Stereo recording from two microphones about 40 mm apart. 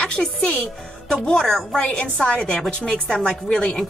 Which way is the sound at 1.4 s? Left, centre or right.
Centre.